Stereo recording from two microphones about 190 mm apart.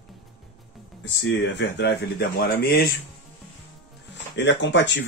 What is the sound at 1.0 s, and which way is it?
Speech, 65° left (ahead or behind).